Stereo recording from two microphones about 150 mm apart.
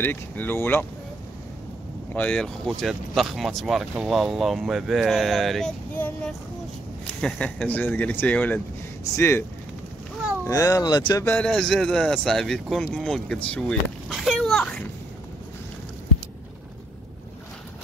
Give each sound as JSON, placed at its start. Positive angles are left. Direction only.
{"t": 0.0, "sound": "speech", "side_deg": 15}
{"t": 2.1, "sound": "speech", "side_deg": 5}
{"t": 5.9, "sound": "speech", "side_deg": 10}
{"t": 10.4, "sound": "speech", "side_deg": 20}
{"t": 11.2, "sound": "speech", "side_deg": 5}
{"t": 12.9, "sound": "a sound", "side_deg": 5}